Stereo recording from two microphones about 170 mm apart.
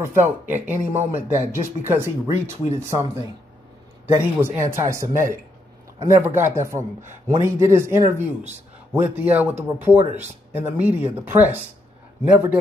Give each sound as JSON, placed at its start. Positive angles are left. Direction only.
{"t": 0.0, "sound": "speech", "side_deg": -15}
{"t": 9.9, "sound": "speech", "side_deg": -40}
{"t": 10.5, "sound": "speech", "side_deg": -10}